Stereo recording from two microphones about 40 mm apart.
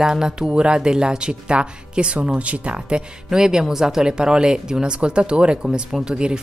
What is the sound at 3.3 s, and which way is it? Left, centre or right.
A woman's voice, centre.